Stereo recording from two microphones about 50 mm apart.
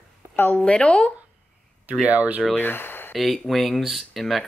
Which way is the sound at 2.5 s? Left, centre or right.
Left.